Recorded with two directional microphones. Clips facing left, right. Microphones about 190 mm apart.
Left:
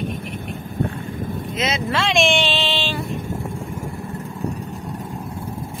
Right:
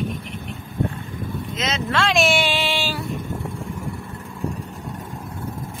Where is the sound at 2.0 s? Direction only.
Centre (ahead or behind).